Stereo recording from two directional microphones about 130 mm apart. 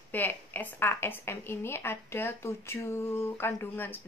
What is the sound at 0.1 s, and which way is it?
A woman's voice, 15° left (ahead or behind).